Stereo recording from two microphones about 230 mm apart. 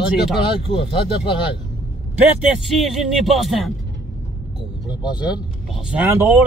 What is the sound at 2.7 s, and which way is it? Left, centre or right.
Speech, centre.